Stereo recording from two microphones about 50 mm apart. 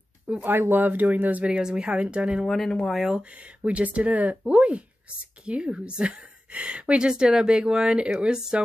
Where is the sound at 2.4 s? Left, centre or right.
Centre.